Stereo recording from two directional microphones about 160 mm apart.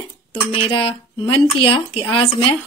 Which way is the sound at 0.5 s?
35° left (ahead or behind).